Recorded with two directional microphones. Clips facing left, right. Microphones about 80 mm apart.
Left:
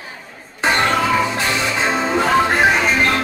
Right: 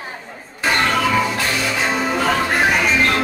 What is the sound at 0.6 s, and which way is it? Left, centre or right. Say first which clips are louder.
Music: left 1 dB; left.